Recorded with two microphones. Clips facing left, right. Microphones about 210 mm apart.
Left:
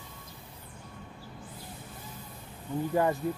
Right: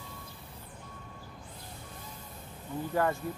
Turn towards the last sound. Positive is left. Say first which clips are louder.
# left 2 dB
turn(degrees=20)  # may be behind; listen again after turning